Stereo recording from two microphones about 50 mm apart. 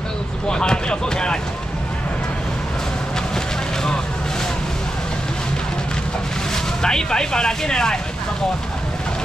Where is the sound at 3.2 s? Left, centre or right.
Centre.